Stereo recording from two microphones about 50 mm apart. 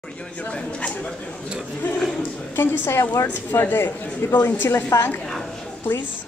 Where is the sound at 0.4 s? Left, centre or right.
Left.